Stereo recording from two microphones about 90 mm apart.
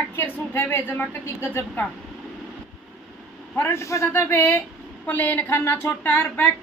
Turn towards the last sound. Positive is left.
turn(degrees=20)  # may be behind; listen again after turning